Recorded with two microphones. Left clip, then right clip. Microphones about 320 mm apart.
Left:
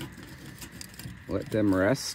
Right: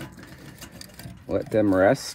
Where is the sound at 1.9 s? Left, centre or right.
Centre.